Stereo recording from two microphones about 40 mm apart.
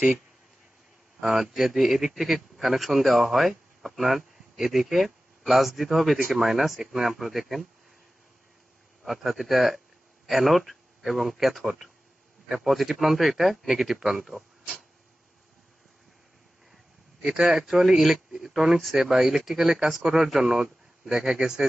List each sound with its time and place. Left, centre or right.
1.4 s a man's voice: centre
9.0 s a man's voice: centre
17.3 s speech: centre